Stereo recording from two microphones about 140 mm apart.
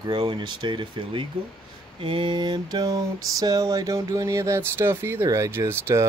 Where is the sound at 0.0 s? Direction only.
35° right (ahead or behind).